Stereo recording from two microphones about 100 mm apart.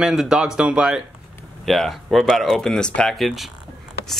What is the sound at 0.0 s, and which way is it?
Speech, 5° right (ahead or behind).